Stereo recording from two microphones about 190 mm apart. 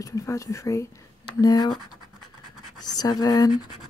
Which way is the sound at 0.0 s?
15° left (ahead or behind).